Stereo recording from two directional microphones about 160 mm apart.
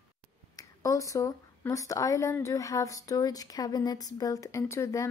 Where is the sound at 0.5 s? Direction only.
20° left (ahead or behind).